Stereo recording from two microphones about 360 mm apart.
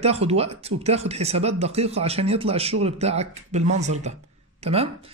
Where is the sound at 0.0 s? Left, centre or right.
Centre.